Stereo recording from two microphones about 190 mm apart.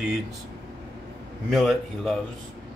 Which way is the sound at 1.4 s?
Centre (ahead or behind).